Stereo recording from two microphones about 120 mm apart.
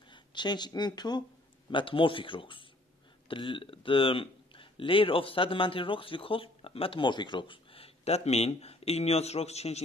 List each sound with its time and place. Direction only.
0.1 s a man's voice: 40° left (ahead or behind); by 9.8 s 60° left (ahead or behind)